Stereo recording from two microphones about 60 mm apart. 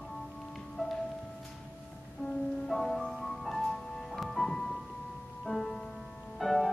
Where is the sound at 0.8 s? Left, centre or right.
Centre.